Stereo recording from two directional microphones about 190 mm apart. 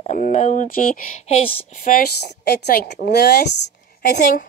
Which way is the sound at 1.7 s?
50° left (ahead or behind).